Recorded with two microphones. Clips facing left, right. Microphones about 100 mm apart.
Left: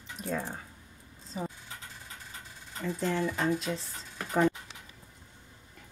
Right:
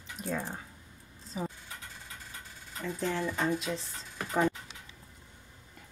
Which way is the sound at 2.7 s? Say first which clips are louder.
Left 2 dB; centre (ahead or behind).